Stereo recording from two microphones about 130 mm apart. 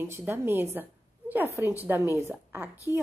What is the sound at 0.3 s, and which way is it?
A woman's voice, 15° right (ahead or behind).